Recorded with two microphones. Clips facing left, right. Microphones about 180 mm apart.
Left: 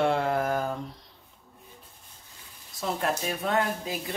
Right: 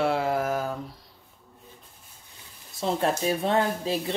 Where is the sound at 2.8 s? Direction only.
30° right (ahead or behind).